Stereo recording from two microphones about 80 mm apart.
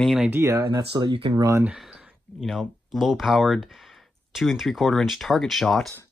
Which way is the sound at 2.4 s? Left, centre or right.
Centre.